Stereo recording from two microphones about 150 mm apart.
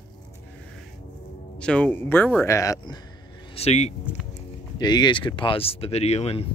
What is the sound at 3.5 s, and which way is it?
Speech, 45° left (ahead or behind).